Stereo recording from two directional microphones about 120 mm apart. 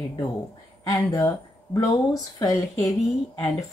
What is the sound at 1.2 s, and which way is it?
Speech, 25° left (ahead or behind).